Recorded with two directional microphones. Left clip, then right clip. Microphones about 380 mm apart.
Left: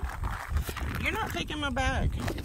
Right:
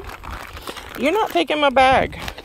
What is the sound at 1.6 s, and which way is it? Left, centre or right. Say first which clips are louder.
Speech: right 18 dB; right.